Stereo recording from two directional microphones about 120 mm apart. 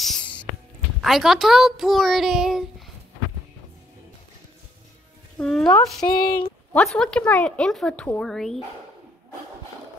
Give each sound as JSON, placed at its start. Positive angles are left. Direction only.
{"t": 0.0, "sound": "music", "side_deg": 5}
{"t": 1.0, "sound": "a child's voice", "side_deg": 0}
{"t": 5.4, "sound": "a child's voice", "side_deg": 5}
{"t": 6.0, "sound": "speech", "side_deg": 40}
{"t": 6.7, "sound": "speech", "side_deg": 5}